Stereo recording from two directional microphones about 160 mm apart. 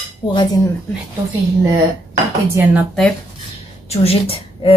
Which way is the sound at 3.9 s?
40° left (ahead or behind).